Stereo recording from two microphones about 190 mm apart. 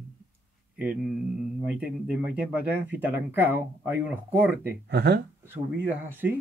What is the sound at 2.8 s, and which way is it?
Speech, 10° right (ahead or behind).